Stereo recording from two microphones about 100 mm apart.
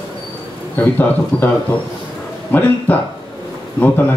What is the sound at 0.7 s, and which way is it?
Speech, 20° left (ahead or behind).